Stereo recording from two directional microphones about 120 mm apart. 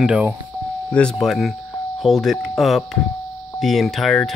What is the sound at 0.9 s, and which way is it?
Speech, 10° left (ahead or behind).